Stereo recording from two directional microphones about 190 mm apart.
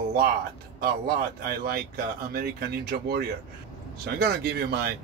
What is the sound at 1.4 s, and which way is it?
Speech, 55° right (ahead or behind).